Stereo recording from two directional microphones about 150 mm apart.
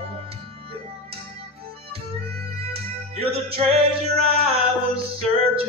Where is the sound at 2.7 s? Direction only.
40° right (ahead or behind).